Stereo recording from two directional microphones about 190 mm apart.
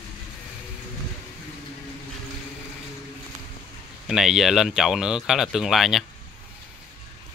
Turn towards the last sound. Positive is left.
turn(degrees=0)  # may be behind; listen again after turning